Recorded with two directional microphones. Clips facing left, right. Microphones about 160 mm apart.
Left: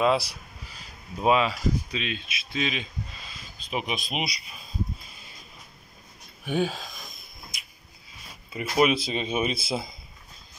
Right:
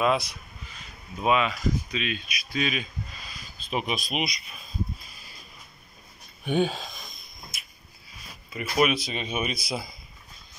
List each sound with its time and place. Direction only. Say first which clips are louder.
0.0 s speech: left 1 dB; 30° left (ahead or behind)
6.4 s speech: right 2 dB; 5° left (ahead or behind)
7.5 s a sound: even; 15° left (ahead or behind)
8.5 s speech: left 1 dB; 25° left (ahead or behind)